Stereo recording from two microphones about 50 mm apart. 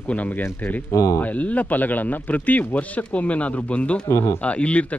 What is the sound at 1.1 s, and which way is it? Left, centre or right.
Speech, left.